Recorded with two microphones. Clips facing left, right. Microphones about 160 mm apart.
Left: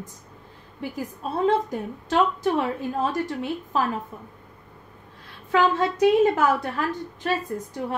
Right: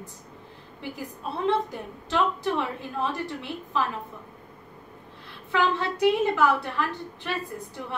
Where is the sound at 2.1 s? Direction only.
45° left (ahead or behind).